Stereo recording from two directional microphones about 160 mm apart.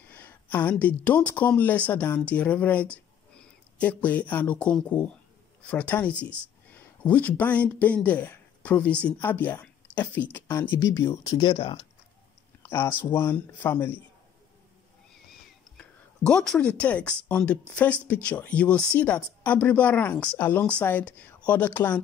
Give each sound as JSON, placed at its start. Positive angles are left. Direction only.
{"t": 0.1, "sound": "speech", "side_deg": 10}
{"t": 11.1, "sound": "speech", "side_deg": 30}
{"t": 12.6, "sound": "speech", "side_deg": 15}
{"t": 15.8, "sound": "speech", "side_deg": 5}